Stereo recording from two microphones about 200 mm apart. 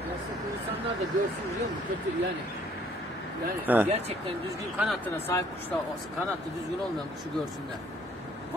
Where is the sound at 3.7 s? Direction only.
10° right (ahead or behind).